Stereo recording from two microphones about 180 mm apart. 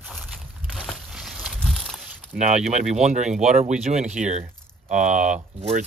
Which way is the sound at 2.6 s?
40° right (ahead or behind).